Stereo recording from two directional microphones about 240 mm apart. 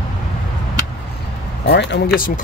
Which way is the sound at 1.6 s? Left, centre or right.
Left.